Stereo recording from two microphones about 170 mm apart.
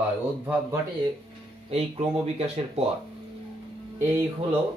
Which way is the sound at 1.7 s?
35° right (ahead or behind).